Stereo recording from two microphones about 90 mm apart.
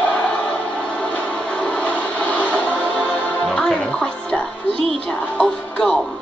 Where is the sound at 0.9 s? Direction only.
15° left (ahead or behind).